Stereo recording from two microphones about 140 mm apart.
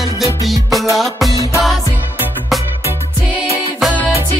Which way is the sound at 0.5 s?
Centre (ahead or behind).